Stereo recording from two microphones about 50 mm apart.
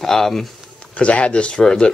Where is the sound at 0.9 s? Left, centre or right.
Left.